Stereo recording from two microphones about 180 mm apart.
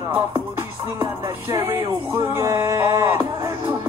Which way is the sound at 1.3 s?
15° right (ahead or behind).